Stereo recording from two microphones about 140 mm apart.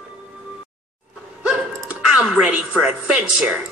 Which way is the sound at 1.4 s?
5° right (ahead or behind).